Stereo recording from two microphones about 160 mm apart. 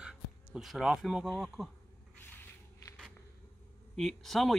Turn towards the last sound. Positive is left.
turn(degrees=0)  # may be behind; listen again after turning